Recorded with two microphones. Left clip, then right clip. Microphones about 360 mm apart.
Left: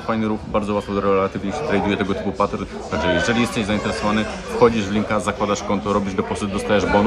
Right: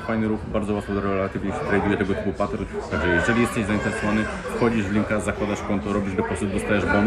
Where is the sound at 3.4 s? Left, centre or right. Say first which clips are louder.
Left 2 dB; centre.